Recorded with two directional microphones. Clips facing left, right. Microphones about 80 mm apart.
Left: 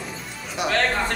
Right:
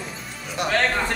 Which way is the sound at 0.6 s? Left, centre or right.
Centre.